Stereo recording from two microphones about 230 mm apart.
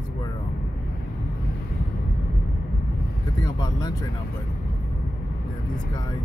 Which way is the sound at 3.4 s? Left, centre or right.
Centre.